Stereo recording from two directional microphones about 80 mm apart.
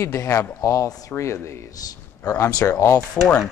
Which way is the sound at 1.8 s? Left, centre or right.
Left.